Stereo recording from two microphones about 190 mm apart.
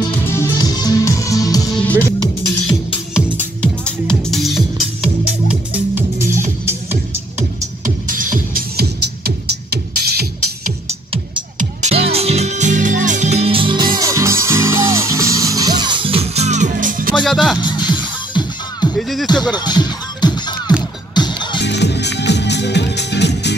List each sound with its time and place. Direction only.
0.0 s music: 15° left (ahead or behind)
3.6 s music: 5° left (ahead or behind)
6.9 s music: 40° right (ahead or behind); by 10.2 s 55° right (ahead or behind)
11.5 s music: 35° right (ahead or behind)
17.1 s music: centre (ahead or behind)
17.6 s music: 25° left (ahead or behind)
18.9 s music: centre (ahead or behind)
19.2 s music: 20° left (ahead or behind)
21.5 s music: 65° left (ahead or behind)